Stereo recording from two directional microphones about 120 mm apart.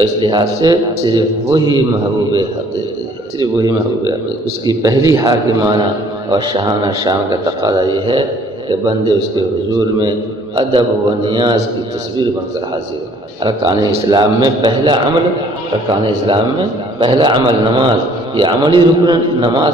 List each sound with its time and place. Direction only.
0.0 s a man's voice: 35° right (ahead or behind)
6.3 s a man's voice: 40° right (ahead or behind)
13.4 s a man's voice: 35° right (ahead or behind)